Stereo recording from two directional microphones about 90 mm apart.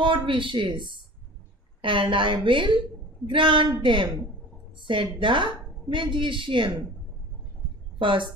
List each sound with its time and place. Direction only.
0.0 s a woman's voice: 70° right (ahead or behind)
8.0 s a woman's voice: 70° right (ahead or behind)